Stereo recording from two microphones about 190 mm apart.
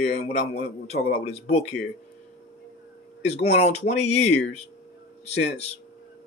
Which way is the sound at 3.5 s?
35° left (ahead or behind).